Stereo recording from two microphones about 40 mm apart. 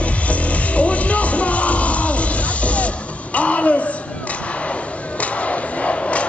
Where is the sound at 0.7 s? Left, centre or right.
Left.